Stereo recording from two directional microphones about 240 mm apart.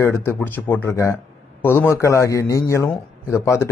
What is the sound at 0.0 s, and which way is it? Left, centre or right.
A man's voice, centre.